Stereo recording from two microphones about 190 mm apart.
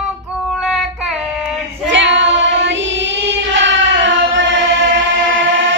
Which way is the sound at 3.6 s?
75° right (ahead or behind).